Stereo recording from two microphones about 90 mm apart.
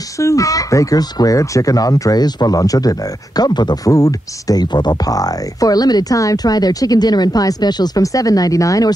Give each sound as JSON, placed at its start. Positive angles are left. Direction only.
{"t": 0.2, "sound": "speech", "side_deg": 35}